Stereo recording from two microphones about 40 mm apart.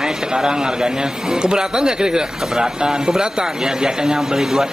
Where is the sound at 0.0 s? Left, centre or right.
Centre.